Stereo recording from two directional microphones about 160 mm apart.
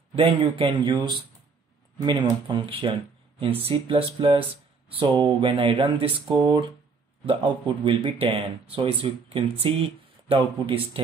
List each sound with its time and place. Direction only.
0.1 s speech: 35° right (ahead or behind)